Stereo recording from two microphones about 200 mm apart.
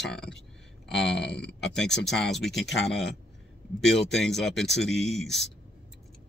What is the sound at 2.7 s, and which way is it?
Speech, 60° left (ahead or behind).